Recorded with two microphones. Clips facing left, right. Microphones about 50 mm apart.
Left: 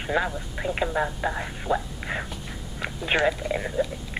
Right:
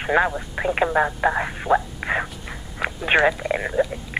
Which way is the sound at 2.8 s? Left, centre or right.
Right.